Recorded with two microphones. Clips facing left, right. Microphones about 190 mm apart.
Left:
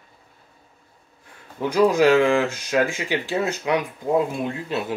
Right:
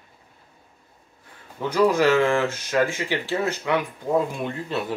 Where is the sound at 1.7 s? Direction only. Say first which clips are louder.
Left 2 dB; 15° left (ahead or behind).